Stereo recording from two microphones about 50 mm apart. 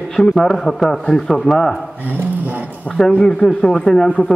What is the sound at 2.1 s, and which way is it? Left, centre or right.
Dog, right.